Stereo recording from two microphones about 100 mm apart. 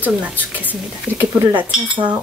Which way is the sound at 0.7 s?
15° right (ahead or behind).